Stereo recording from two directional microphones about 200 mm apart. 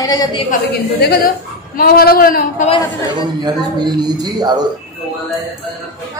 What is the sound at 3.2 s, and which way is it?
Speech, 20° right (ahead or behind).